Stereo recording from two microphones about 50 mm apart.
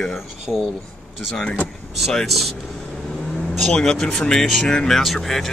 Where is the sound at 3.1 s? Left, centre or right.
Centre.